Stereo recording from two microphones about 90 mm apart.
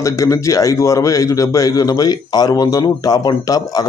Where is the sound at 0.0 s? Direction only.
35° left (ahead or behind).